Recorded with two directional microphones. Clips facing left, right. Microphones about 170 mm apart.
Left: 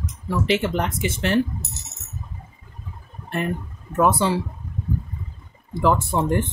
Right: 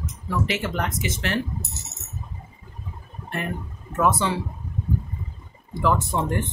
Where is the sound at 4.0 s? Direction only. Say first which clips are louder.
Left 3 dB; 30° left (ahead or behind).